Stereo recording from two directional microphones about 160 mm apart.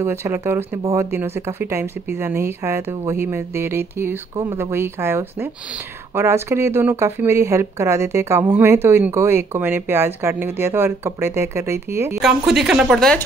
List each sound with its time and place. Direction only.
0.0 s speech: 15° right (ahead or behind)
12.2 s speech: centre (ahead or behind)